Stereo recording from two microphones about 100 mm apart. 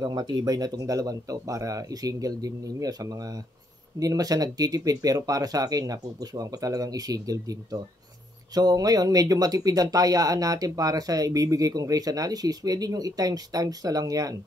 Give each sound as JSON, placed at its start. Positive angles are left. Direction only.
{"t": 0.0, "sound": "speech", "side_deg": -45}